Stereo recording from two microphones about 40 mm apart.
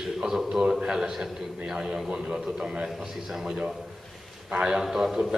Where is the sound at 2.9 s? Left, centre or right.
Centre.